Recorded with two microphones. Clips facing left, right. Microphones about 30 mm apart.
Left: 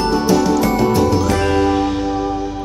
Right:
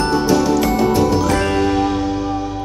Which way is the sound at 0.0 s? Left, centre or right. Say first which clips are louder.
Even; centre.